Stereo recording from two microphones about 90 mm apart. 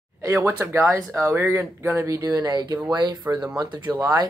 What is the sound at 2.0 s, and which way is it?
Speech, 40° right (ahead or behind).